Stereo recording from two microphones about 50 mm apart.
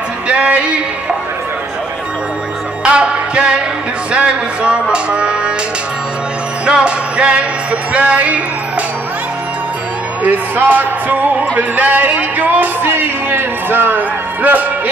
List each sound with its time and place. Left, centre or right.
0.3 s music: right
2.8 s music: right
6.6 s music: centre
10.2 s music: right